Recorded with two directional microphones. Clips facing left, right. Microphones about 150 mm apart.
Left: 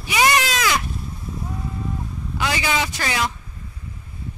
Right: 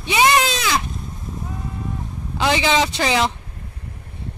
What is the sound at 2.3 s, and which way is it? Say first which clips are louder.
Speech: right 5 dB; 25° right (ahead or behind).